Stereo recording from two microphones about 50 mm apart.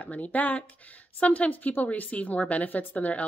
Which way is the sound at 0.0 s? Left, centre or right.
Left.